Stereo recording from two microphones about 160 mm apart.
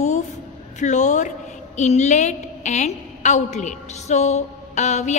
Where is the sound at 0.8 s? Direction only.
45° left (ahead or behind).